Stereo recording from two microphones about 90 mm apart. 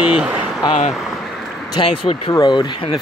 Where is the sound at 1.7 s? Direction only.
80° left.